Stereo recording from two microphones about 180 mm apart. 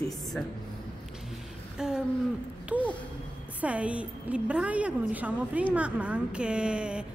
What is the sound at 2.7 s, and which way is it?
A woman's voice, 10° right (ahead or behind).